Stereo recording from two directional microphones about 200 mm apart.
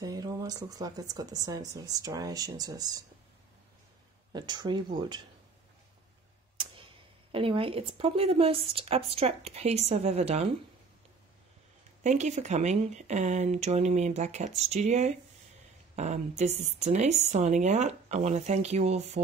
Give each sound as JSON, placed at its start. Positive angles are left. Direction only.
{"t": 0.0, "sound": "a woman's voice", "side_deg": -20}
{"t": 4.3, "sound": "speech", "side_deg": -20}
{"t": 6.5, "sound": "a sound", "side_deg": -25}
{"t": 7.3, "sound": "speech", "side_deg": -25}
{"t": 12.0, "sound": "speech", "side_deg": -35}